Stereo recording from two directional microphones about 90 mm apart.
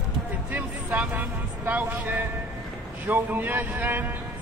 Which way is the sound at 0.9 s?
20° right (ahead or behind).